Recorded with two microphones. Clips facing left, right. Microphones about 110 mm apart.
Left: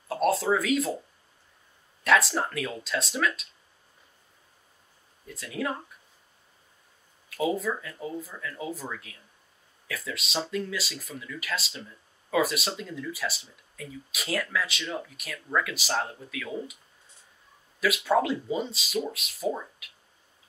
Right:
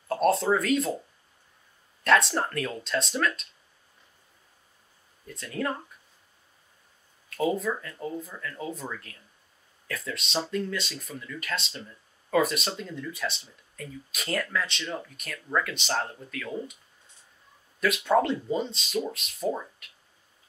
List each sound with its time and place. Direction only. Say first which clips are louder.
0.1 s speech: right 1 dB; centre (ahead or behind)
2.0 s speech: right 1 dB; centre (ahead or behind)
5.2 s speech: right 1 dB; 5° left (ahead or behind)
7.2 s speech: right 1 dB; centre (ahead or behind)
17.7 s speech: right 1 dB; 5° left (ahead or behind)